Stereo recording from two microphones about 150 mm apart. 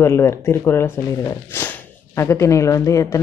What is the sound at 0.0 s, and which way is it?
Speech, 15° left (ahead or behind).